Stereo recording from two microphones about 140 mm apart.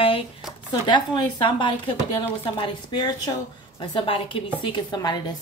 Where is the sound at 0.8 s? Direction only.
35° left (ahead or behind).